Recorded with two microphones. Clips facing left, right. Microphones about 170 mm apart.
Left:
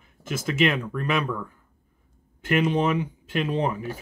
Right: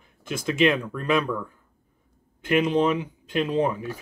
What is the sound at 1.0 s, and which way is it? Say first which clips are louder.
Speech: right 2 dB; 5° left (ahead or behind).